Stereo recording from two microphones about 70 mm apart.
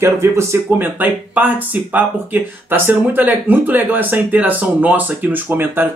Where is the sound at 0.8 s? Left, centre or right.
Right.